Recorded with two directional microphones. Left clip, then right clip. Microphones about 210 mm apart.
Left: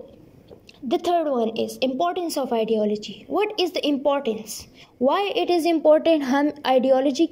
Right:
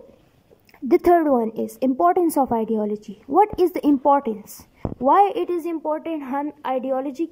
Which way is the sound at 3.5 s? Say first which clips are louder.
Right 3 dB; 65° right (ahead or behind).